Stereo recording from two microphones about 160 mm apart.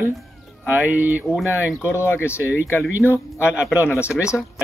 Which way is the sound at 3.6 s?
10° right (ahead or behind).